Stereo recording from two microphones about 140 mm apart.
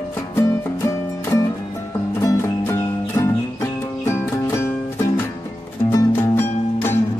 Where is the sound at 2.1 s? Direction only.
20° left (ahead or behind).